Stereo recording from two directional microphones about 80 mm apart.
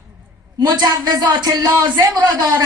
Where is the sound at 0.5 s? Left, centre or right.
Right.